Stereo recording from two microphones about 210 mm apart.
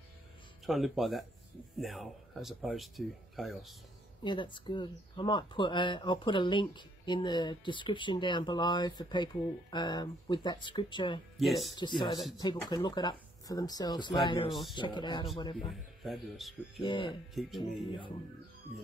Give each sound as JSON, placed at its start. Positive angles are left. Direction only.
{"t": 0.7, "sound": "speech", "side_deg": 0}
{"t": 4.2, "sound": "speech", "side_deg": 20}
{"t": 11.3, "sound": "speech", "side_deg": 0}
{"t": 12.4, "sound": "speech", "side_deg": 20}
{"t": 14.5, "sound": "speech", "side_deg": 0}
{"t": 14.8, "sound": "speech", "side_deg": 20}
{"t": 15.7, "sound": "speech", "side_deg": 0}
{"t": 16.8, "sound": "speech", "side_deg": 25}
{"t": 17.3, "sound": "speech", "side_deg": 0}